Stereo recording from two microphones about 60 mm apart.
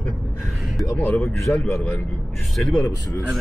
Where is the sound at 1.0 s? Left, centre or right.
Left.